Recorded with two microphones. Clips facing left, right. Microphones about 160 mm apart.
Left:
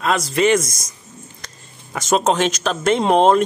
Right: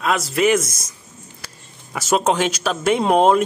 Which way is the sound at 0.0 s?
5° right (ahead or behind).